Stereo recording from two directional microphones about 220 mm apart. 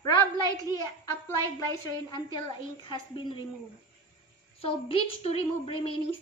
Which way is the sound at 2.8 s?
20° left (ahead or behind).